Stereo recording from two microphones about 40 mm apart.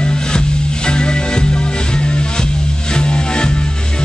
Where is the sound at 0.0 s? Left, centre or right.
Left.